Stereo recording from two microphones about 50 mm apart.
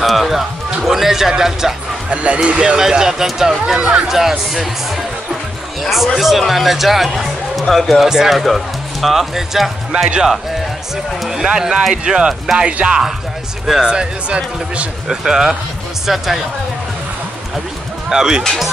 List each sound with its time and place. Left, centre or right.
0.0 s speech: centre
2.0 s speech: right
4.1 s speech: centre
8.1 s speech: centre
8.4 s speech: centre
11.4 s speech: centre
18.1 s speech: centre